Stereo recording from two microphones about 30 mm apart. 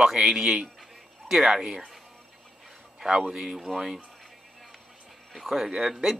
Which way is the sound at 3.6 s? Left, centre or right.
Centre.